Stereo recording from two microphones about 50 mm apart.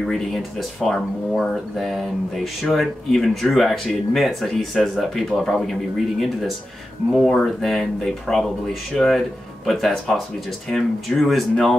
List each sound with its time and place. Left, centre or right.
0.0 s speech: centre